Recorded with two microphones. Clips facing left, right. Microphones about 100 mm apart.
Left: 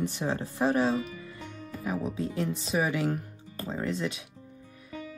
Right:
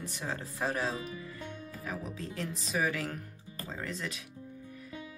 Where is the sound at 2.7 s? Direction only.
25° left (ahead or behind).